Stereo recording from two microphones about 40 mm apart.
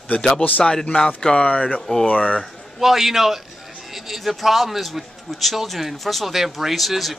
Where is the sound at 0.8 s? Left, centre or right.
Left.